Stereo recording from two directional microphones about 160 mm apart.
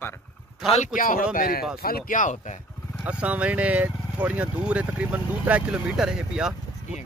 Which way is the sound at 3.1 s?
5° right (ahead or behind).